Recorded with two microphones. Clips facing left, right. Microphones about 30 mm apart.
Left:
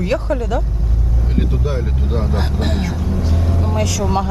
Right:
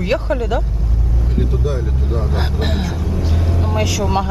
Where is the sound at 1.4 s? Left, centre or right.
Left.